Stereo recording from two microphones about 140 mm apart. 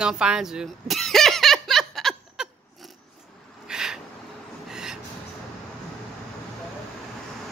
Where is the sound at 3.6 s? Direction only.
5° right (ahead or behind).